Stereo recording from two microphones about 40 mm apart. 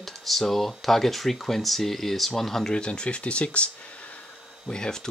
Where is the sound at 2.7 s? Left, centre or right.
Left.